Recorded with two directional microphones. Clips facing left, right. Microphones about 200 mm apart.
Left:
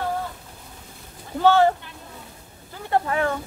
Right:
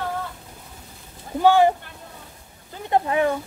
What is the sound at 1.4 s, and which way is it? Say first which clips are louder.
Speech: right 1 dB; 15° right (ahead or behind).